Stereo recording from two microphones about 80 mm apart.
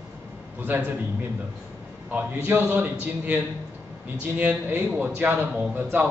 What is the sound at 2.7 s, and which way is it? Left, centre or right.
Speech, right.